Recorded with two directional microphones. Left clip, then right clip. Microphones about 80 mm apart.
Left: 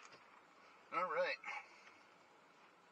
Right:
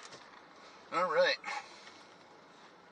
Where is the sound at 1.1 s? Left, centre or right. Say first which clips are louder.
Right 10 dB; right.